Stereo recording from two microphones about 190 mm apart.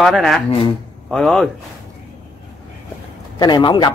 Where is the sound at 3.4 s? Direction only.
20° left (ahead or behind).